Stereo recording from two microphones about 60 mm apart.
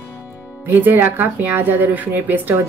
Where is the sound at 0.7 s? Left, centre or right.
Right.